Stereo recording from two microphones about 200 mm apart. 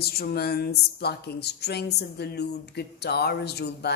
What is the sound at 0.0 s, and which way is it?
A woman's voice, 50° left (ahead or behind).